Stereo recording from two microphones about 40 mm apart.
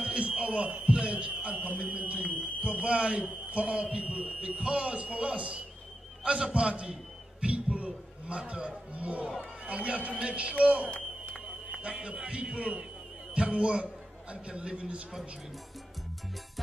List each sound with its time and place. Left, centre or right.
0.0 s a sound: right
0.4 s a man's voice: right
12.3 s a man's voice: right